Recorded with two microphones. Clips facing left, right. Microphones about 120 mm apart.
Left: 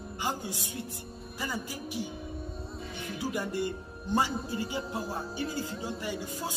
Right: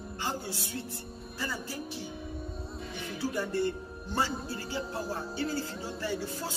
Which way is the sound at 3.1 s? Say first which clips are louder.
Right 1 dB; 15° left (ahead or behind).